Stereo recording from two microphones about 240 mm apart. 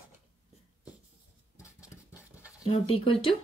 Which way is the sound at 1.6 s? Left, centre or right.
Centre.